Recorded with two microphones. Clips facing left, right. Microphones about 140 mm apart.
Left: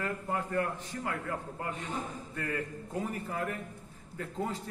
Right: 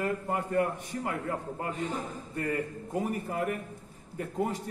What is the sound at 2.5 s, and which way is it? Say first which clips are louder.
A man's voice: right 4 dB; 15° right (ahead or behind).